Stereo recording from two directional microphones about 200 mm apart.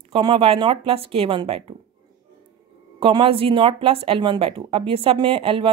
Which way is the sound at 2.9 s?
25° right (ahead or behind).